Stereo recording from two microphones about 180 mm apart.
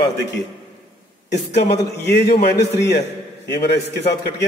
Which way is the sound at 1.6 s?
65° left (ahead or behind).